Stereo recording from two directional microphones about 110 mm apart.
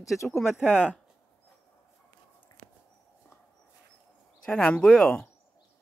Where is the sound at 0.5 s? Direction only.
10° right (ahead or behind).